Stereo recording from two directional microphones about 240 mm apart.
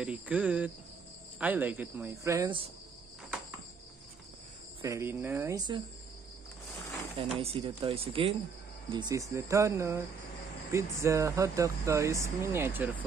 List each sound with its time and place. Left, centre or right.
0.0 s cricket: centre
1.4 s speech: centre
4.8 s speech: centre
7.3 s speech: right